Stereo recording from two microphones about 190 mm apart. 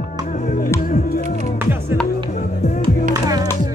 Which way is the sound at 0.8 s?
50° left (ahead or behind).